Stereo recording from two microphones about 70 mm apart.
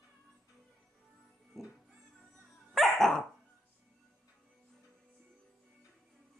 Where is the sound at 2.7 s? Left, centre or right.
Centre.